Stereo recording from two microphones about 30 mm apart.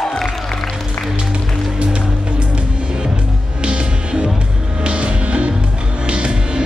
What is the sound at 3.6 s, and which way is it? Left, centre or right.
Music, right.